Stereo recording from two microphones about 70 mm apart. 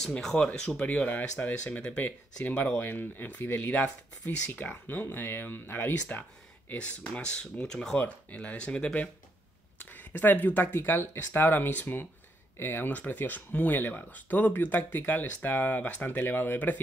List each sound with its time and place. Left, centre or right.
0.1 s speech: centre
0.7 s speech: left
8.0 s speech: left